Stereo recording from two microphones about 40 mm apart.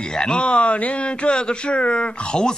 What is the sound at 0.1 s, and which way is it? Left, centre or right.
Speech, centre.